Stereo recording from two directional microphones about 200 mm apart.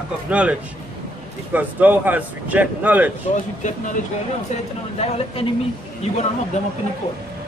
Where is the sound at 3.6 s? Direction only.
40° left (ahead or behind).